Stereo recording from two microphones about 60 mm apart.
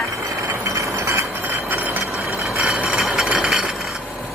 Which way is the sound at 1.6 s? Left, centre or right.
Right.